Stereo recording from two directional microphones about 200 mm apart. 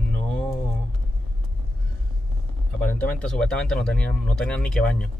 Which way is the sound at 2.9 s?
5° left (ahead or behind).